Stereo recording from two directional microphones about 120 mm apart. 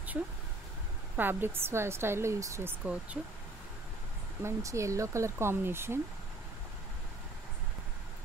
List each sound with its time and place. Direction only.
1.1 s speech: 15° right (ahead or behind)
2.8 s speech: 10° right (ahead or behind)
4.4 s speech: 25° right (ahead or behind)